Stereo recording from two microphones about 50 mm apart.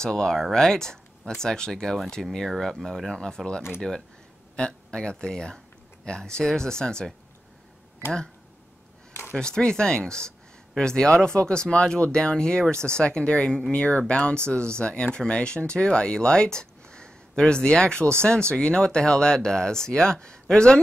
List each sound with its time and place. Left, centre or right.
0.0 s speech: centre
9.4 s speech: centre